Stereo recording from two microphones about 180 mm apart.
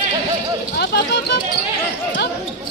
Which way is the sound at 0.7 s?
65° left (ahead or behind).